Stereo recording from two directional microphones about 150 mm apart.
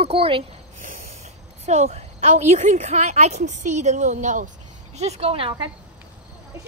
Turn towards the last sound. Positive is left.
turn(degrees=-40)  # may be behind; listen again after turning